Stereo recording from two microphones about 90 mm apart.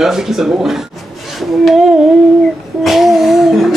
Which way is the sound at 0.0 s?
5° right (ahead or behind).